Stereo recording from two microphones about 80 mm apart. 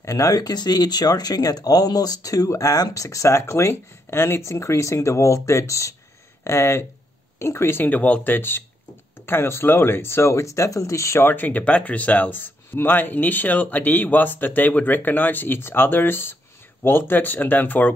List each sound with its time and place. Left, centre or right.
0.0 s speech: left
11.2 s speech: left